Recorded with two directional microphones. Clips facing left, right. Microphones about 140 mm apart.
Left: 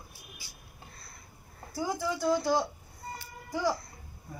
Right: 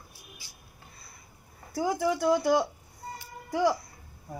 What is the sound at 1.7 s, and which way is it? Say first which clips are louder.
Speech: right 5 dB; 60° right (ahead or behind).